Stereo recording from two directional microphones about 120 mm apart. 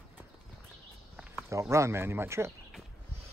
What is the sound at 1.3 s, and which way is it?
Speech, 20° right (ahead or behind).